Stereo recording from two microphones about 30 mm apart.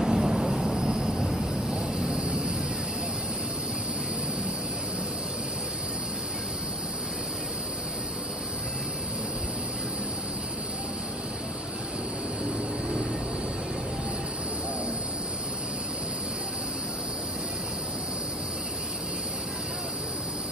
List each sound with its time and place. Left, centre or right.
0.0 s vehicle: centre
0.7 s vehicle: right
2.2 s vehicle: right